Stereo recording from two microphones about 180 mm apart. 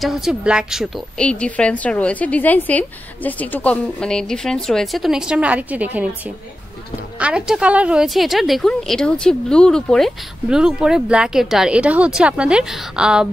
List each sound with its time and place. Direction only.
0.0 s a woman's voice: centre (ahead or behind)